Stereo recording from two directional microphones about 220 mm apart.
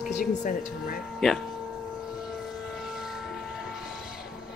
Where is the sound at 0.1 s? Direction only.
40° left (ahead or behind).